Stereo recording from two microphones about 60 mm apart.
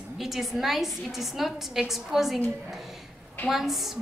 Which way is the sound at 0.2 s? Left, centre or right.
Centre.